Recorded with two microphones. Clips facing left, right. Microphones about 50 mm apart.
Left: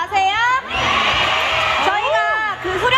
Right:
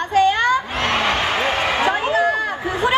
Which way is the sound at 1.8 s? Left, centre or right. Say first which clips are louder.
Even; left.